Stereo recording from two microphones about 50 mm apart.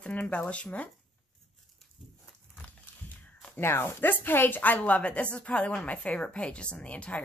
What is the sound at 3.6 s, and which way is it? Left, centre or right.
Speech, left.